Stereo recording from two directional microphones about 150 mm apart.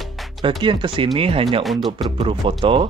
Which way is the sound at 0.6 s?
35° right (ahead or behind).